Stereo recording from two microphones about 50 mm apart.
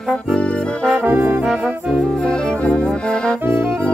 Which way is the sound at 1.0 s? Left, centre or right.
Right.